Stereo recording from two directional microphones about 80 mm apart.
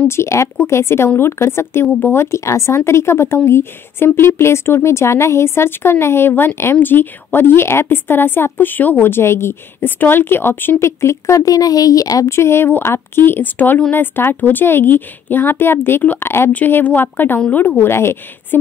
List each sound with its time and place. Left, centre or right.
0.1 s speech: left
12.3 s speech: left